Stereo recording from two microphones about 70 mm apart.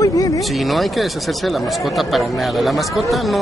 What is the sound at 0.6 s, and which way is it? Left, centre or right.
Speech, centre.